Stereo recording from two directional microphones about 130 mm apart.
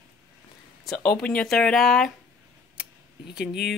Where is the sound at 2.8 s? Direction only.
10° right (ahead or behind).